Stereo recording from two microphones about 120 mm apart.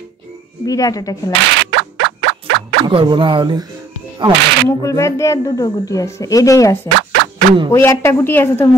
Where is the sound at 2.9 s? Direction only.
40° right (ahead or behind).